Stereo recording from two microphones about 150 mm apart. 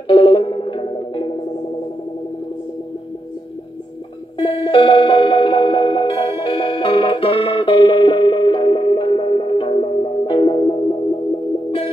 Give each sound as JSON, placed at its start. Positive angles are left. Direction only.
{"t": 0.1, "sound": "music", "side_deg": 35}
{"t": 4.4, "sound": "music", "side_deg": 35}